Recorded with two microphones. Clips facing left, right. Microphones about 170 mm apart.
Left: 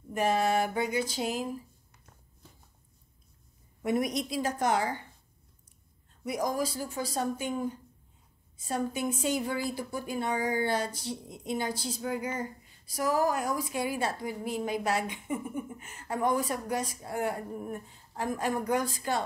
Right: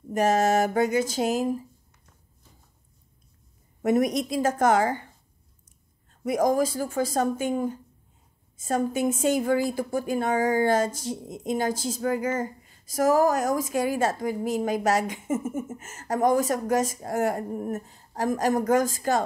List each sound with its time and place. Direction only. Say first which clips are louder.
0.1 s a woman's voice: right 5 dB; 40° right (ahead or behind)
3.8 s a woman's voice: right 6 dB; 45° right (ahead or behind)
6.2 s a woman's voice: right 8 dB; 50° right (ahead or behind)